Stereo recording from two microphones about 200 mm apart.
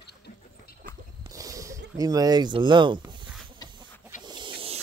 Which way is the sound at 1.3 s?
15° right (ahead or behind).